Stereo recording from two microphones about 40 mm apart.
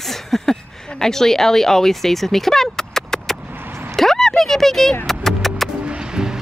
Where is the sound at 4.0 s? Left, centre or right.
Centre.